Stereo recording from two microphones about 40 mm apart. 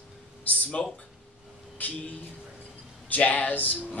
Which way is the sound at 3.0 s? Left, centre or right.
Left.